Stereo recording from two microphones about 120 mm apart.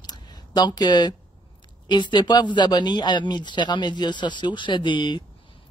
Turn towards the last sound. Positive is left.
turn(degrees=40)  # may be behind; listen again after turning